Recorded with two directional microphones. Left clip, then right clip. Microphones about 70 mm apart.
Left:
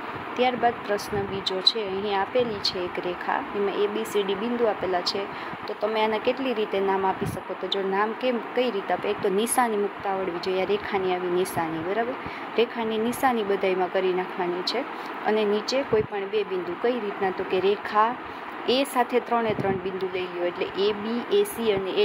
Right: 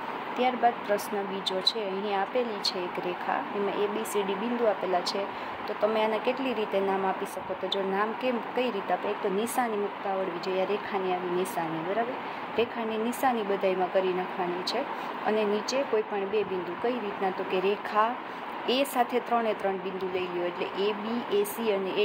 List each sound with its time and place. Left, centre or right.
0.4 s speech: centre
9.0 s speech: left
10.4 s speech: left
12.5 s speech: left
15.2 s speech: left
20.7 s speech: left